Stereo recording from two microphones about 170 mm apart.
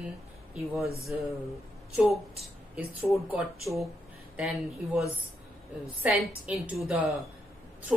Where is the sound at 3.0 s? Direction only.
5° right (ahead or behind).